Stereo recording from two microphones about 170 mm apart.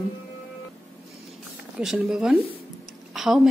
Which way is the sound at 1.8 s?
5° right (ahead or behind).